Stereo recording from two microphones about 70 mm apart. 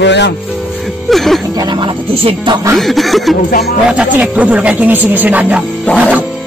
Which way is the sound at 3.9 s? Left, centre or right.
Centre.